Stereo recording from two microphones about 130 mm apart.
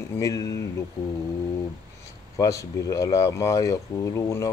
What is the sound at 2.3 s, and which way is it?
Speech, 25° left (ahead or behind).